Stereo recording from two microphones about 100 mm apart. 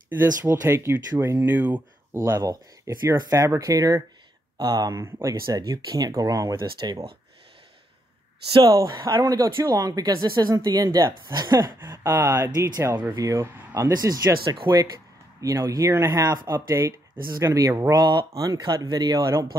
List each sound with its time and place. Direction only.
0.2 s speech: 20° right (ahead or behind)
3.2 s speech: 35° right (ahead or behind)
8.6 s speech: 35° right (ahead or behind)
8.9 s speech: 45° right (ahead or behind); by 13.9 s 30° right (ahead or behind)
13.9 s speech: 40° right (ahead or behind)
16.1 s speech: 45° right (ahead or behind)
16.5 s speech: 30° right (ahead or behind)
17.9 s speech: 45° right (ahead or behind)